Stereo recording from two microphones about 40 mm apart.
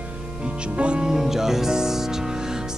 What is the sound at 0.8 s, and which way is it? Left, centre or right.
Speech, right.